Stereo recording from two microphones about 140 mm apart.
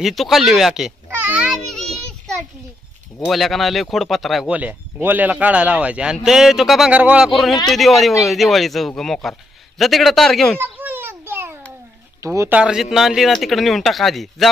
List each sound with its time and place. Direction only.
0.0 s speech: centre (ahead or behind)
1.1 s a sound: 10° right (ahead or behind); by 2.3 s 5° left (ahead or behind)
3.3 s speech: centre (ahead or behind)
10.6 s a sound: 15° right (ahead or behind)
12.2 s speech: 20° right (ahead or behind)
12.5 s speech: 5° right (ahead or behind)